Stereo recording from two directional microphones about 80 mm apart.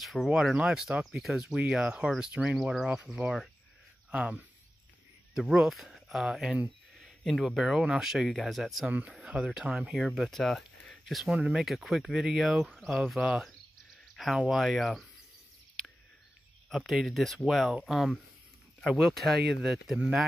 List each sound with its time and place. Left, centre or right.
0.0 s speech: centre
5.3 s speech: centre
16.6 s speech: centre